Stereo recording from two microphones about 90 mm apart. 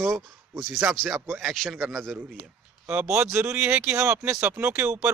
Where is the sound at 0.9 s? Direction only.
5° right (ahead or behind).